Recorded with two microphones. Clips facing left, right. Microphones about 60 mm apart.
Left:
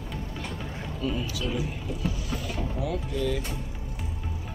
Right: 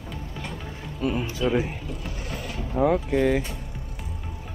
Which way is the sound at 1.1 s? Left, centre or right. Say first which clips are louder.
Right 6 dB; right.